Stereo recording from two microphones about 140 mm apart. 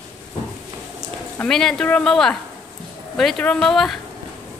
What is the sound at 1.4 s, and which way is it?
Speech, 5° left (ahead or behind).